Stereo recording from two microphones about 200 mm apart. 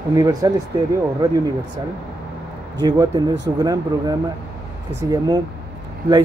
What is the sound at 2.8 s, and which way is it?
Speech, 20° right (ahead or behind).